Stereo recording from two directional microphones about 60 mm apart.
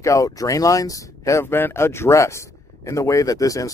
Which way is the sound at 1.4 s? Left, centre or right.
Left.